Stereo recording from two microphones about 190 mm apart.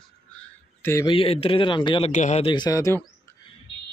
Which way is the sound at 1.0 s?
30° left (ahead or behind).